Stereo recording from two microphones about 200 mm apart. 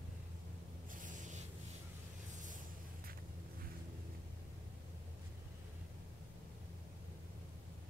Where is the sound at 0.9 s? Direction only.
40° right (ahead or behind).